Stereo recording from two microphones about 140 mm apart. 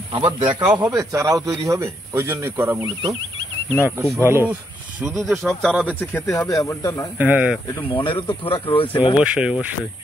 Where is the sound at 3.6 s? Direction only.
15° left (ahead or behind).